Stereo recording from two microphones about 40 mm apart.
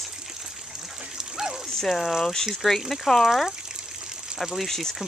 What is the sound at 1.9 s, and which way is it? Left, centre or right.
Speech, centre.